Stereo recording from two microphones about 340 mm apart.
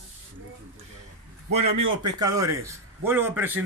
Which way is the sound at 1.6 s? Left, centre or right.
Right.